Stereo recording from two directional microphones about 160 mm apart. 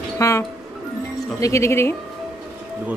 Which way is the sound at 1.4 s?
20° left (ahead or behind).